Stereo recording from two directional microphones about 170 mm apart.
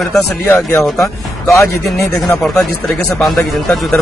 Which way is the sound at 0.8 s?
Centre (ahead or behind).